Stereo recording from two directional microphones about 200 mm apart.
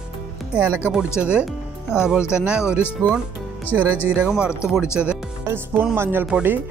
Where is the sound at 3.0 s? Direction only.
15° right (ahead or behind).